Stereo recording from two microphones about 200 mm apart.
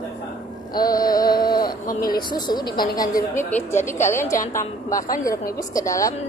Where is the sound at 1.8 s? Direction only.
45° left (ahead or behind).